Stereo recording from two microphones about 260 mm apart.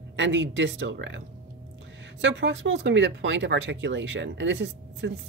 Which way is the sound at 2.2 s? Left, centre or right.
Right.